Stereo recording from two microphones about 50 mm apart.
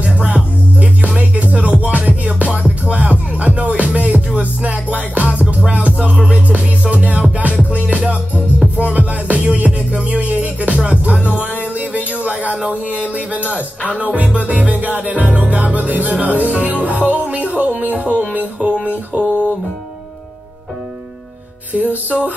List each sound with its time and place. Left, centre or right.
0.0 s music: right
12.5 s music: centre
13.1 s music: right
21.7 s music: right